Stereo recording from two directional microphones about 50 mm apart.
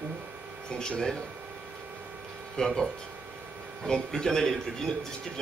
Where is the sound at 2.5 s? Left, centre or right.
Centre.